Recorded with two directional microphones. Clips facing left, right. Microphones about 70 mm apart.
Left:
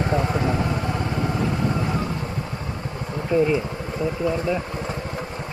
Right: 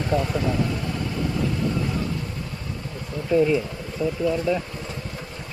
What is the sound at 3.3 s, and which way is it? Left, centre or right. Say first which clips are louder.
Insect: even; left.